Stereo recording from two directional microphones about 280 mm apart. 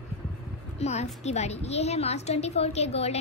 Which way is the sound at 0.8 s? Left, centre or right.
Left.